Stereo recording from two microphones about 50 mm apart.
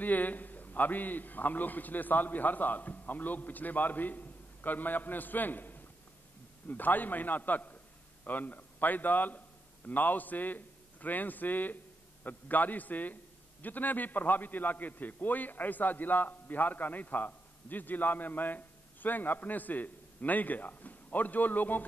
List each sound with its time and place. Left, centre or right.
0.0 s a man's voice: left